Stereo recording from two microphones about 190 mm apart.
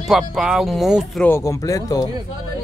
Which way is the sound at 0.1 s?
Centre (ahead or behind).